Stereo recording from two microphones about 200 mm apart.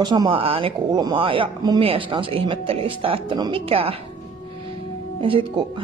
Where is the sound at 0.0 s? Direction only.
20° right (ahead or behind).